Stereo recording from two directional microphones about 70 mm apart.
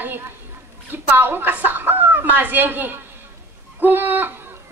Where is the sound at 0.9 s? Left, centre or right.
Right.